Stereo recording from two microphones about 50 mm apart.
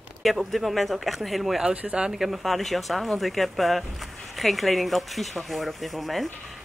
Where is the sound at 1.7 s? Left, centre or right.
Right.